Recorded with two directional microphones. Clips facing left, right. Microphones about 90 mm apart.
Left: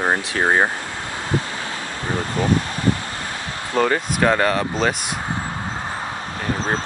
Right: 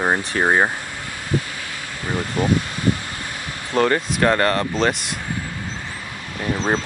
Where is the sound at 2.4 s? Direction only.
35° left (ahead or behind).